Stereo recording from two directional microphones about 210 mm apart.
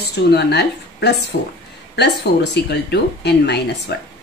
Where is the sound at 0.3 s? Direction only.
50° left (ahead or behind).